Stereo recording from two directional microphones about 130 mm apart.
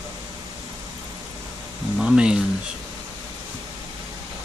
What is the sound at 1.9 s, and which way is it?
Speech, 5° right (ahead or behind).